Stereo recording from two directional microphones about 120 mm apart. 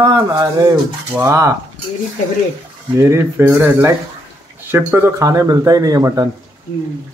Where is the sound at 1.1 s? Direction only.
20° right (ahead or behind).